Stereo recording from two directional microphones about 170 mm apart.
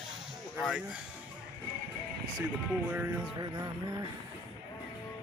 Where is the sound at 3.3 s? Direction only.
20° right (ahead or behind).